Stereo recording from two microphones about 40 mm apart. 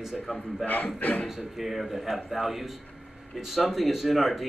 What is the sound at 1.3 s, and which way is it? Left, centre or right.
A man's voice, centre.